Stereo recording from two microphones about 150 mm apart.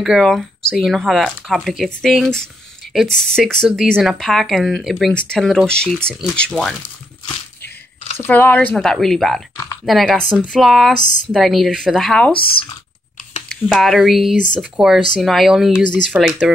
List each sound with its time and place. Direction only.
0.0 s speech: centre (ahead or behind)
8.2 s speech: 10° left (ahead or behind)
12.3 s speech: 35° left (ahead or behind)
13.7 s speech: centre (ahead or behind)